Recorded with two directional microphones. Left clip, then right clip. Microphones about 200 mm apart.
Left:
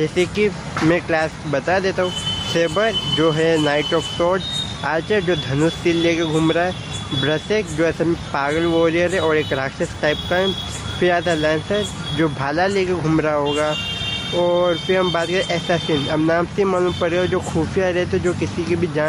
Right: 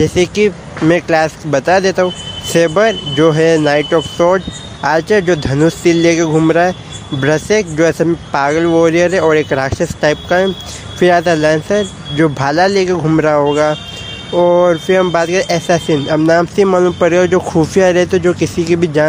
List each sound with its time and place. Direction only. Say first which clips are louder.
0.0 s speech: right 7 dB; 35° right (ahead or behind)